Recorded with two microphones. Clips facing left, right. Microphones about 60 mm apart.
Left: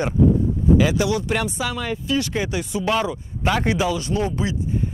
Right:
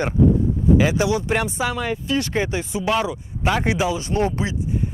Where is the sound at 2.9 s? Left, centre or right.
Centre.